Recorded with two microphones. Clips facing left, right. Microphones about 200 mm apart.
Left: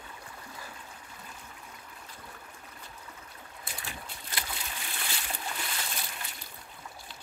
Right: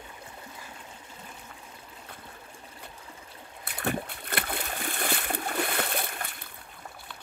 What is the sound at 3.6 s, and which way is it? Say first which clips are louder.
Boat: right 13 dB; 60° right (ahead or behind).